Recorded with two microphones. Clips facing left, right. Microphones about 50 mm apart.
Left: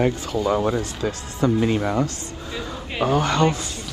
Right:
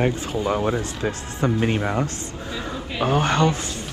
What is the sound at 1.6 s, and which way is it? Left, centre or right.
Speech, right.